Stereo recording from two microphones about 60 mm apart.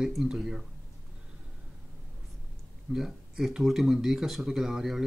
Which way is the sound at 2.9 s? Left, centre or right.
Centre.